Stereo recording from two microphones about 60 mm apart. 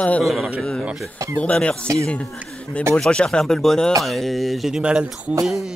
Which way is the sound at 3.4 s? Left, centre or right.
Centre.